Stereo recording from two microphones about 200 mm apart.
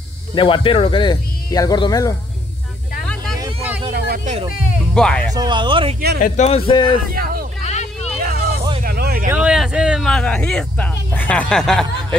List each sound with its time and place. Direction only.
0.3 s speech: 25° left (ahead or behind)
3.9 s vehicle: 50° right (ahead or behind)
4.9 s speech: 5° left (ahead or behind)
5.3 s speech: 20° right (ahead or behind)
6.2 s speech: 35° left (ahead or behind)
6.7 s speech: 25° left (ahead or behind)
7.6 s vehicle: 35° left (ahead or behind)
8.2 s vehicle: 45° right (ahead or behind)
9.3 s speech: 5° right (ahead or behind)